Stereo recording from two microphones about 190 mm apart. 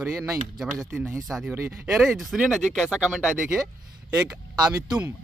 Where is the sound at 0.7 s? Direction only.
5° right (ahead or behind).